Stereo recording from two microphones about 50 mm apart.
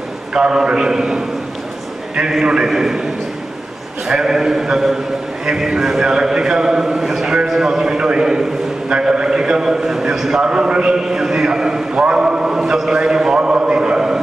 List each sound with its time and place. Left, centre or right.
0.3 s a man's voice: centre
2.4 s a man's voice: centre
4.1 s a man's voice: centre
10.4 s a man's voice: centre